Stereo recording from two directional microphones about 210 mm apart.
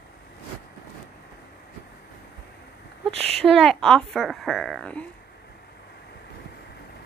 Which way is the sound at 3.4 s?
Centre (ahead or behind).